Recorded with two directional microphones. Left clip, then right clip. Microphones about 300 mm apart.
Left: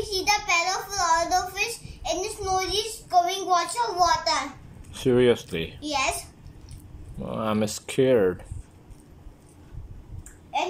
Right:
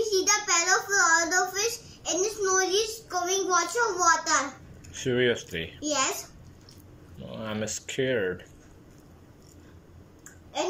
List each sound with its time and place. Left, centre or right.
0.1 s a sound: centre
4.9 s speech: centre
7.2 s speech: centre